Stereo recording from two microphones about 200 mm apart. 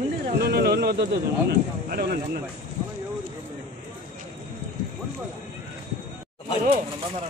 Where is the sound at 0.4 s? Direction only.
50° right (ahead or behind).